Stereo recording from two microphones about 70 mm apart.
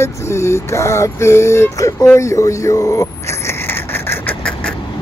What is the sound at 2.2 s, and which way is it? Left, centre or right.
Speech, left.